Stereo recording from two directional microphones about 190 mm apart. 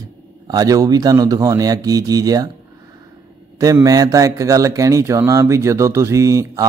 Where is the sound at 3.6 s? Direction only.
20° right (ahead or behind).